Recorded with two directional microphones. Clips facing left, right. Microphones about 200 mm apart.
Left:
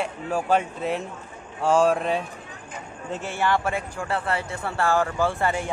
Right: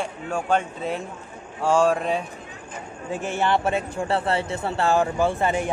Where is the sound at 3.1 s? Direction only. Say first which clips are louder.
Right 2 dB; 15° right (ahead or behind).